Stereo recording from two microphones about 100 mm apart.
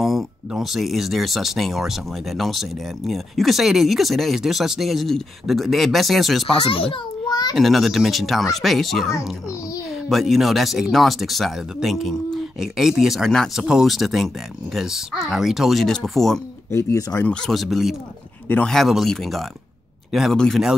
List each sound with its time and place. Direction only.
0.0 s speech: centre (ahead or behind)
6.7 s a child's voice: 65° left (ahead or behind)
7.2 s a sound: 45° left (ahead or behind)
7.5 s speech: centre (ahead or behind)
16.7 s speech: 30° left (ahead or behind)
17.3 s speech: centre (ahead or behind)